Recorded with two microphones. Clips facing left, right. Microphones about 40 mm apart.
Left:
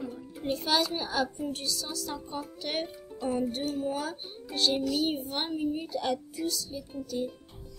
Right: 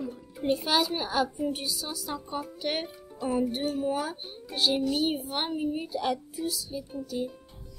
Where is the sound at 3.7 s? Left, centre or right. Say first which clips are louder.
Right 2 dB; centre.